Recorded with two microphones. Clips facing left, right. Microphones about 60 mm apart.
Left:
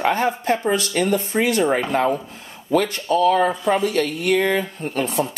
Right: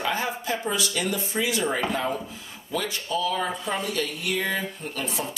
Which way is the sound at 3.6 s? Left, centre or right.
Left.